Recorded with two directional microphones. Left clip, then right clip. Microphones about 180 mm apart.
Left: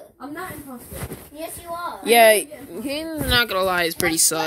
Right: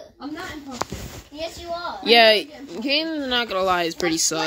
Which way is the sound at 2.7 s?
30° right (ahead or behind).